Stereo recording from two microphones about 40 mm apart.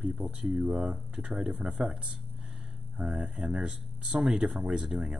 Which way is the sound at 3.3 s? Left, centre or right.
Centre.